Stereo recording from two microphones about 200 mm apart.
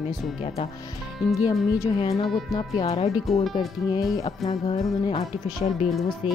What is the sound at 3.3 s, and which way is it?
Speech, centre (ahead or behind).